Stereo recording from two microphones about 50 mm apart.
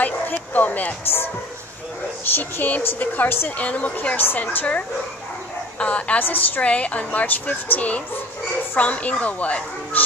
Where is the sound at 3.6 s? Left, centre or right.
Left.